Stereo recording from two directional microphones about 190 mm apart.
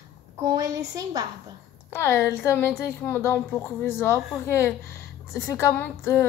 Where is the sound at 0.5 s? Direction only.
20° right (ahead or behind).